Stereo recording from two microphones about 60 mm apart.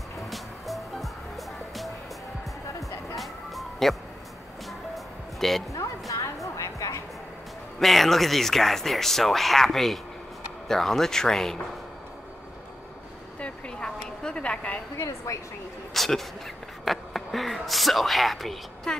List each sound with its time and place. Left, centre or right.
0.3 s music: centre
3.2 s music: centre
5.7 s music: left
7.8 s speech: centre
13.4 s a sound: centre
14.2 s a woman's voice: centre
15.3 s speech: left
15.9 s a sound: centre